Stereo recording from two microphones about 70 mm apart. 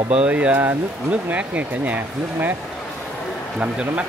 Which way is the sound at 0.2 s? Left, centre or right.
Centre.